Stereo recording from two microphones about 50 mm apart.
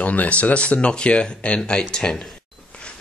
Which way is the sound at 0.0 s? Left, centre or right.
Left.